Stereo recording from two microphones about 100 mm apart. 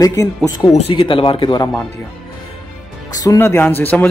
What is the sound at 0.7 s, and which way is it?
Speech, 70° left (ahead or behind).